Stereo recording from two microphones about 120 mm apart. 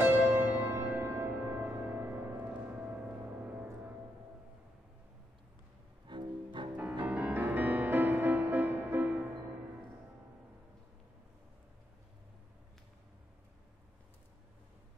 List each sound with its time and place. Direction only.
0.0 s music: 15° right (ahead or behind)
6.0 s cello: 40° right (ahead or behind)
6.8 s music: 10° right (ahead or behind)